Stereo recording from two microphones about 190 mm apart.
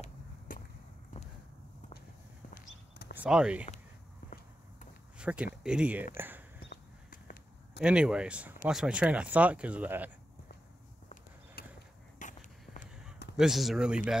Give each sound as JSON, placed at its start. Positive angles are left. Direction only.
{"t": 0.5, "sound": "whip", "side_deg": 45}
{"t": 2.5, "sound": "walk", "side_deg": 55}
{"t": 3.2, "sound": "speech", "side_deg": -5}
{"t": 5.2, "sound": "speech", "side_deg": -5}
{"t": 6.1, "sound": "a sound", "side_deg": -10}
{"t": 6.7, "sound": "a sound", "side_deg": 55}
{"t": 7.8, "sound": "speech", "side_deg": -5}
{"t": 11.6, "sound": "a sound", "side_deg": 55}
{"t": 12.2, "sound": "walk", "side_deg": 40}
{"t": 13.4, "sound": "speech", "side_deg": 0}